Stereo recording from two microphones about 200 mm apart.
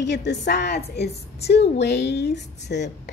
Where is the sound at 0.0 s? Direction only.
60° left (ahead or behind).